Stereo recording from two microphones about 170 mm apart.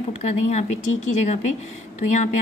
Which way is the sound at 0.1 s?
40° left (ahead or behind).